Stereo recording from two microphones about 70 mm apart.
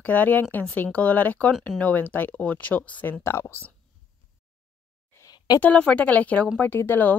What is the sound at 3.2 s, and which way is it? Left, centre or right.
Speech, left.